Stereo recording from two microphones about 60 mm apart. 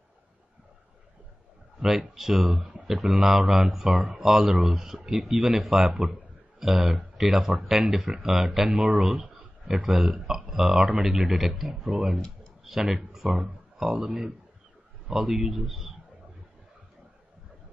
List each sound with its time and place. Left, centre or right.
1.8 s speech: centre
9.2 s a sound: right
9.7 s speech: centre
15.1 s speech: centre